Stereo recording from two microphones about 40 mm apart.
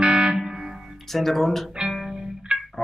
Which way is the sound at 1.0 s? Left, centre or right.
Centre.